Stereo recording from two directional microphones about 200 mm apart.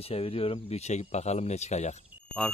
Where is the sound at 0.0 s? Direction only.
30° left (ahead or behind).